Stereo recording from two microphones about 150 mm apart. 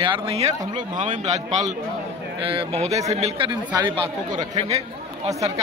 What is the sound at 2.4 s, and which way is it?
Speech, 40° right (ahead or behind).